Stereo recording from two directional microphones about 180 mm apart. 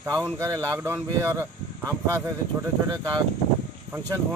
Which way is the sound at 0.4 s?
15° right (ahead or behind).